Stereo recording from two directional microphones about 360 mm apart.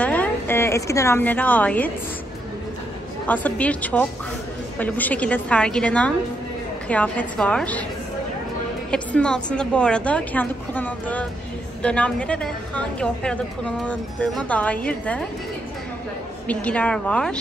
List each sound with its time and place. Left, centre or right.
0.0 s a sound: centre
3.3 s a woman's voice: centre
8.9 s a woman's voice: centre
16.4 s a woman's voice: centre